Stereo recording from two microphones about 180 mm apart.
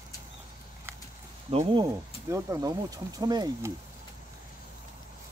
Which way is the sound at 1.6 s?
20° right (ahead or behind).